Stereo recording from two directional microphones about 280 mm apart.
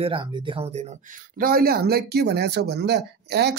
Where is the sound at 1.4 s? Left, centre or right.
Right.